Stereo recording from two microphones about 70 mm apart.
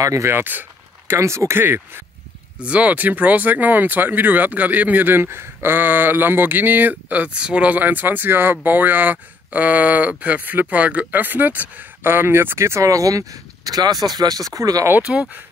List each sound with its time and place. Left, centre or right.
0.0 s speech: right
0.3 s a sound: right
1.1 s speech: right
1.6 s speech: right
2.6 s speech: centre; by 14.9 s right
15.0 s speech: centre